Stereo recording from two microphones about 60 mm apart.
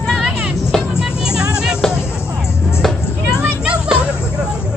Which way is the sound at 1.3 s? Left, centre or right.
Centre.